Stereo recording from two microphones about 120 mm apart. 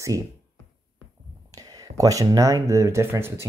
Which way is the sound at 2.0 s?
30° right (ahead or behind).